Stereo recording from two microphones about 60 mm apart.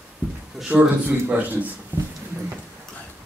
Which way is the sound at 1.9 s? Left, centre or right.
Right.